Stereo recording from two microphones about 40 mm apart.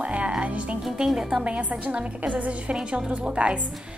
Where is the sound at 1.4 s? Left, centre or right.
Right.